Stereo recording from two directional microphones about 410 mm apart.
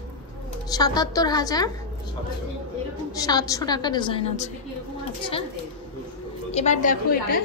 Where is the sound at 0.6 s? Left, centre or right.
Centre.